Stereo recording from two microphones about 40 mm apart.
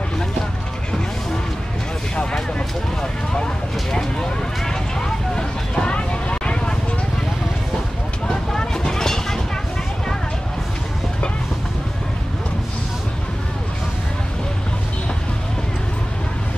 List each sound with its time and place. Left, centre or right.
3.9 s vehicle: centre
5.9 s vehicle: left
8.3 s vehicle: centre